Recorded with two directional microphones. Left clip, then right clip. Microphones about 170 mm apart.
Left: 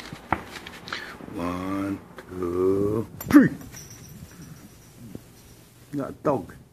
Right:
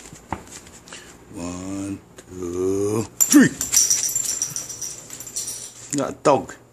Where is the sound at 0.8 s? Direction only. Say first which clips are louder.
Left 7 dB; 20° right (ahead or behind).